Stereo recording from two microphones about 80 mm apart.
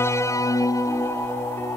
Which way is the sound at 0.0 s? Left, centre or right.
Left.